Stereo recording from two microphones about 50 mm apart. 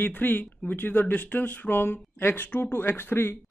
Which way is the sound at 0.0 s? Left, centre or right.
Left.